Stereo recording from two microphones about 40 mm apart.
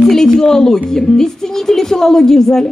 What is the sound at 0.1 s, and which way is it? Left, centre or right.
Speech, centre.